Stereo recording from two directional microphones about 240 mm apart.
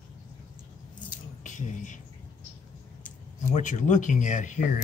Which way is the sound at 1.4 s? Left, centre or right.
Left.